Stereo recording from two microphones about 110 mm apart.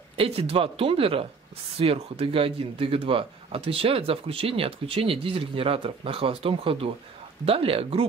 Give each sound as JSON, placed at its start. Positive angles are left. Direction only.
{"t": 0.1, "sound": "speech", "side_deg": -60}